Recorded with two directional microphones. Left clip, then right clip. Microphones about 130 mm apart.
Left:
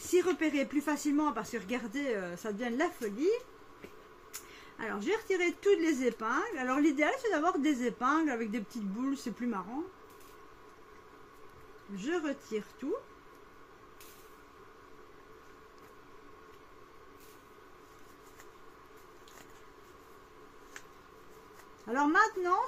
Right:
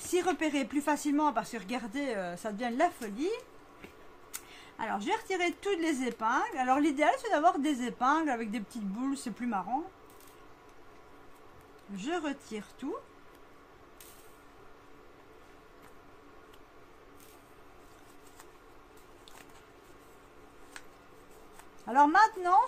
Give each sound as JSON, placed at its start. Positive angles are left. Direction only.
{"t": 0.0, "sound": "speech", "side_deg": -25}
{"t": 12.0, "sound": "speech", "side_deg": -30}
{"t": 21.8, "sound": "speech", "side_deg": -25}